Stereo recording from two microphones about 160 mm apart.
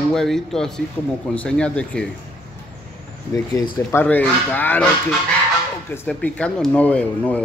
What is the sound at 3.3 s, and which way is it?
Speech, 20° left (ahead or behind).